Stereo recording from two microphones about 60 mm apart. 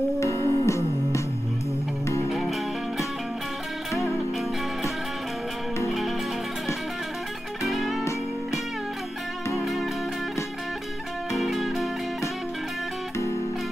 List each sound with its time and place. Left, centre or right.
0.2 s music: left
2.2 s music: centre
7.6 s music: centre
9.6 s music: centre
11.3 s music: centre